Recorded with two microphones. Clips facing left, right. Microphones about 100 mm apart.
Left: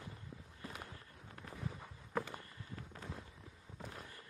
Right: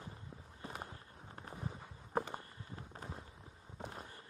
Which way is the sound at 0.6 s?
30° right (ahead or behind).